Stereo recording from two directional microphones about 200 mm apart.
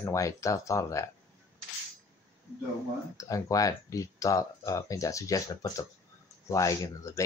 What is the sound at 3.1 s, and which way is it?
Speech, 15° left (ahead or behind).